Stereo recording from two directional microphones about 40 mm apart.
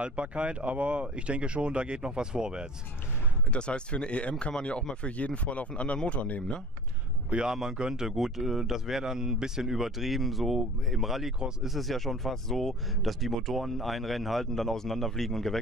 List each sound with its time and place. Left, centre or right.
0.0 s speech: right
3.5 s speech: left
7.4 s speech: centre
8.2 s speech: centre